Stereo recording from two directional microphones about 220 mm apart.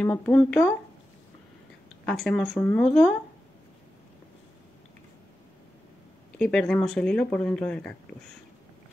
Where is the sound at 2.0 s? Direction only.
Centre (ahead or behind).